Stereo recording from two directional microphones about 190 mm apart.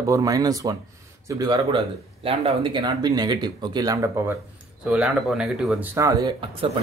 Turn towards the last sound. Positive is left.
turn(degrees=-25)  # may be behind; listen again after turning